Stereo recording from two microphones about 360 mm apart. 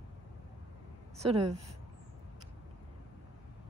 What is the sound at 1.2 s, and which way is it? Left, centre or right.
Speech, centre.